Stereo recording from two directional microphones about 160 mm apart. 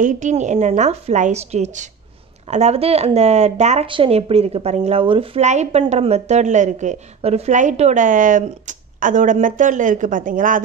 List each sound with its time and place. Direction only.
0.0 s speech: 50° right (ahead or behind)